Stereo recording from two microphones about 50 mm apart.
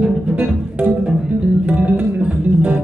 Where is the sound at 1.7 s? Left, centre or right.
Right.